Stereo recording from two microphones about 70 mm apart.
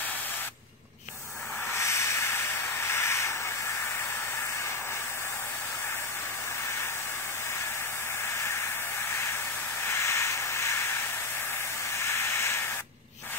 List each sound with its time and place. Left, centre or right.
1.7 s hiss: left
9.8 s hiss: left
12.0 s hiss: left